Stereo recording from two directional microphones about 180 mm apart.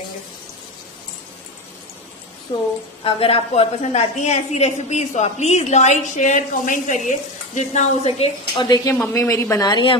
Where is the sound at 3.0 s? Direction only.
30° left (ahead or behind).